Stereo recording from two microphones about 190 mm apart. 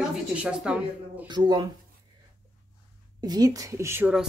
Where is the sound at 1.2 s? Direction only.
25° right (ahead or behind).